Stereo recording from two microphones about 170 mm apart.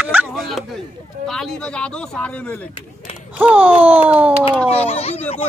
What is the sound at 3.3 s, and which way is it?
Speech, 10° right (ahead or behind).